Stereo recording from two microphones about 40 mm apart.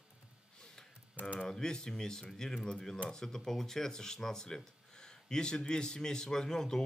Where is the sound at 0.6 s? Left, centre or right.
Centre.